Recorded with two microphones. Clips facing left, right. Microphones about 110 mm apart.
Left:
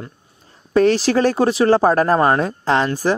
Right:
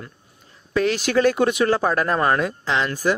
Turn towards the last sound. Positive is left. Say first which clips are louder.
# left 4 dB
turn(degrees=40)  # may be behind; listen again after turning